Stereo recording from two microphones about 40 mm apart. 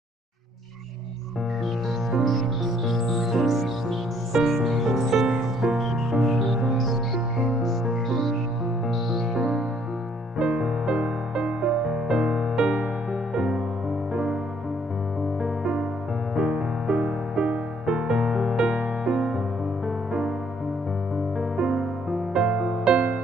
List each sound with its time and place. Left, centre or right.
2.1 s music: centre
10.4 s music: right
15.4 s music: right
21.4 s music: centre